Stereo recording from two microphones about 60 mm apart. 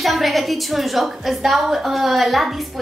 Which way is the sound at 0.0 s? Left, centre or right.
Centre.